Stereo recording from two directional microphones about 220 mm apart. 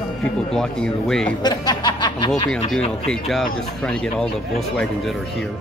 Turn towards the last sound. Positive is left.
turn(degrees=5)  # may be behind; listen again after turning